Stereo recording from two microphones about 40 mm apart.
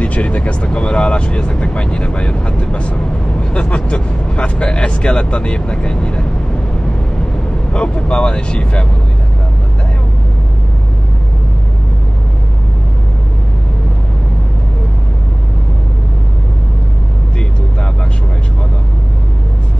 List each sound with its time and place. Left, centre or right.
0.0 s speech: left
7.7 s speech: left